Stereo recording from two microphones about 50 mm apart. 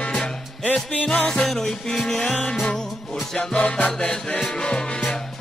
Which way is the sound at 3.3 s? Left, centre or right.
Centre.